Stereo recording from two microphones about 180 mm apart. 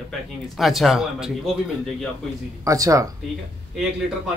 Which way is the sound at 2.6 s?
20° right (ahead or behind).